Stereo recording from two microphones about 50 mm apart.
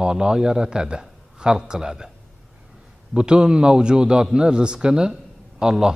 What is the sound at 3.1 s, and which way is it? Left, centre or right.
A man's voice, centre.